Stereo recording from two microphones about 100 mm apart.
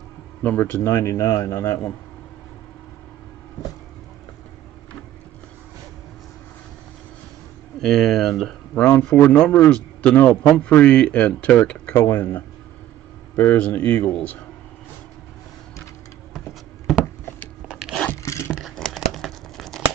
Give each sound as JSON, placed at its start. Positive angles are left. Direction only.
{"t": 0.4, "sound": "a man's voice", "side_deg": 20}
{"t": 7.8, "sound": "speech", "side_deg": 5}
{"t": 8.7, "sound": "a man's voice", "side_deg": 15}
{"t": 16.3, "sound": "a sound", "side_deg": -5}
{"t": 17.6, "sound": "crunch", "side_deg": -5}
{"t": 18.2, "sound": "a sound", "side_deg": 30}
{"t": 18.5, "sound": "crumpling", "side_deg": 0}